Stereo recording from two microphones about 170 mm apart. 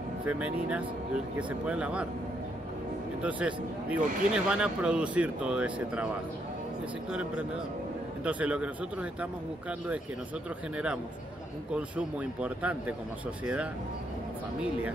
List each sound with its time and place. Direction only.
0.2 s speech: 10° right (ahead or behind)
3.2 s speech: 10° right (ahead or behind)
7.1 s a man's voice: 5° right (ahead or behind)
11.7 s speech: 5° right (ahead or behind)